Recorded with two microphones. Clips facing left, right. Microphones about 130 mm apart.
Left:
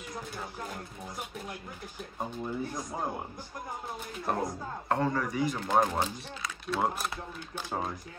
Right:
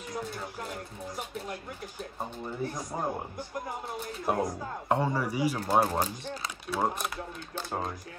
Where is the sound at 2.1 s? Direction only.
5° right (ahead or behind).